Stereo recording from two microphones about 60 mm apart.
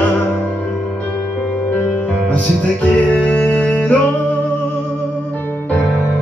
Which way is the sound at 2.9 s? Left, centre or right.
Left.